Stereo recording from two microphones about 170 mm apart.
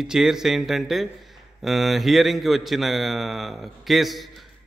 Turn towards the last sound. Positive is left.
turn(degrees=0)  # may be behind; listen again after turning